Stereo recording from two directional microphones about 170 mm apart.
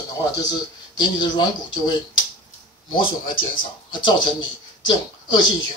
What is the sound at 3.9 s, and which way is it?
Speech, 25° left (ahead or behind).